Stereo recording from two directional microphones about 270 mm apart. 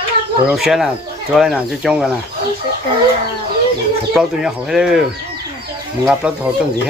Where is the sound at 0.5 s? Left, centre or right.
Centre.